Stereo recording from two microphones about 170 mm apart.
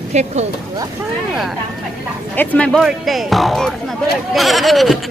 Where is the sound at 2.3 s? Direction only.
10° left (ahead or behind).